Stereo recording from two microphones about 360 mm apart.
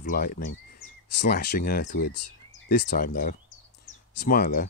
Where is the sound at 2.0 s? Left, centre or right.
Left.